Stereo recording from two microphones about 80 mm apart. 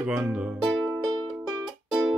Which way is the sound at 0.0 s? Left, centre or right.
Centre.